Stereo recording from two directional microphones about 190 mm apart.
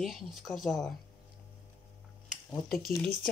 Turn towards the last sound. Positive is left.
turn(degrees=0)  # may be behind; listen again after turning